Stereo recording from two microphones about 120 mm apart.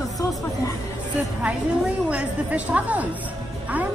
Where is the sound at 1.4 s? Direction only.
10° right (ahead or behind).